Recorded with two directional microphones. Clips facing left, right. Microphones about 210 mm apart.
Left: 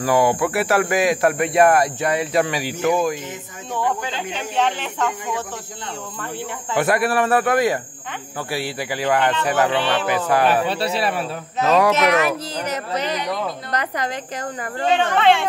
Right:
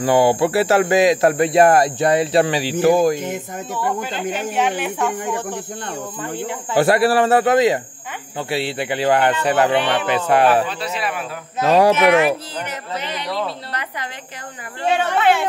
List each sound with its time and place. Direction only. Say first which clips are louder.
0.0 s speech: right 3 dB; 30° right (ahead or behind)
4.6 s speech: even; 10° right (ahead or behind)
6.8 s speech: right 4 dB; 30° right (ahead or behind)
10.5 s speech: even; 35° left (ahead or behind)
14.9 s speech: even; 5° right (ahead or behind)